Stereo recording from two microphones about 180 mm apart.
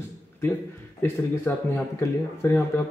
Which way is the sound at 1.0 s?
10° left (ahead or behind).